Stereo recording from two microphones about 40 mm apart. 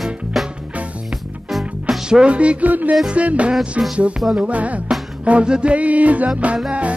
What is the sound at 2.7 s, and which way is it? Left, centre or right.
Music, right.